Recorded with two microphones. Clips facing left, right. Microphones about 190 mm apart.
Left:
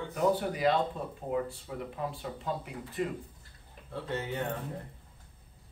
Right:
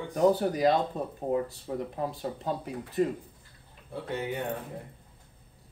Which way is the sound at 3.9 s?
15° right (ahead or behind).